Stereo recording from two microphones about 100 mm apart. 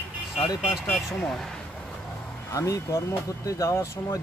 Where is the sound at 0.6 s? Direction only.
5° right (ahead or behind).